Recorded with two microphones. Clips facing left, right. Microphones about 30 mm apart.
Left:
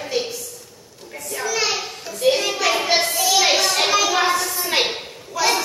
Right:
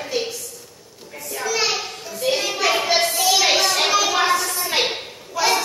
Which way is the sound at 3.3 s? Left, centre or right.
Centre.